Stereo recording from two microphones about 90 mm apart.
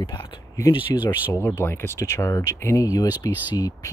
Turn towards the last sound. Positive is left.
turn(degrees=40)  # may be behind; listen again after turning